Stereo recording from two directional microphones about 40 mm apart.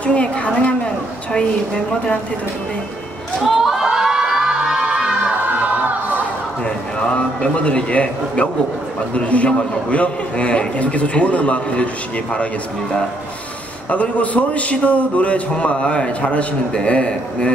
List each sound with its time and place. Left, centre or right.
0.0 s a woman's voice: left
3.6 s crowd: centre
4.7 s a sound: right
5.2 s crowd: right
6.6 s a sound: left
7.5 s a man's voice: left
13.8 s a man's voice: left